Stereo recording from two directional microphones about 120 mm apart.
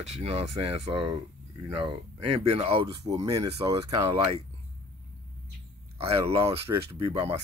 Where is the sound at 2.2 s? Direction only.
55° right (ahead or behind).